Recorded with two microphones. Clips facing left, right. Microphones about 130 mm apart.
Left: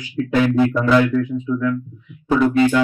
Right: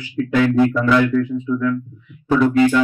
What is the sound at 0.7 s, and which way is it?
Speech, 35° left (ahead or behind).